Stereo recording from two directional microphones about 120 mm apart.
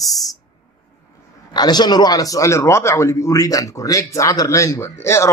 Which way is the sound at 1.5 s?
35° left (ahead or behind).